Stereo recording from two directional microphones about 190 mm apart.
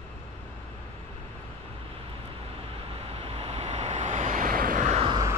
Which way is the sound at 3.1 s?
30° right (ahead or behind).